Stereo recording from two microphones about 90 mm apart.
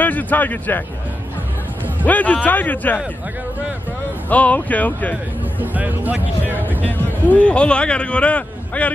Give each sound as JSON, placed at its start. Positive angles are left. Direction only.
{"t": 0.0, "sound": "speech", "side_deg": 20}
{"t": 2.0, "sound": "a man's voice", "side_deg": 15}
{"t": 4.3, "sound": "a man's voice", "side_deg": 15}
{"t": 5.6, "sound": "speech", "side_deg": -20}
{"t": 6.5, "sound": "a sound", "side_deg": -20}
{"t": 7.3, "sound": "a man's voice", "side_deg": 15}